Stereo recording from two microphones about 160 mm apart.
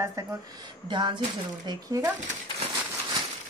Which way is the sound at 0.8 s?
30° right (ahead or behind).